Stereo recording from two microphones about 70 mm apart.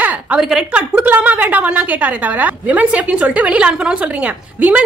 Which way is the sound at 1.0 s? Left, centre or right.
Right.